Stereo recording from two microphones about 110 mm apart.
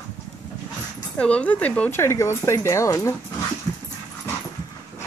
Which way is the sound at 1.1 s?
10° left (ahead or behind).